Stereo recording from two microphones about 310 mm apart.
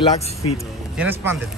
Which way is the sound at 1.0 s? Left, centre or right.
Centre.